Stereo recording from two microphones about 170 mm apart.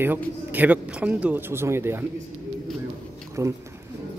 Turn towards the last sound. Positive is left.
turn(degrees=-15)  # may be behind; listen again after turning